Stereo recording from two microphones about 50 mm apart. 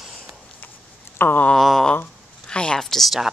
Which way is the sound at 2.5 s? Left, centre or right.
Centre.